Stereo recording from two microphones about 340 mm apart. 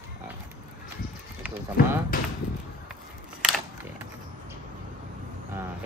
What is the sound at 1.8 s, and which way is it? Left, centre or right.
Speech, left.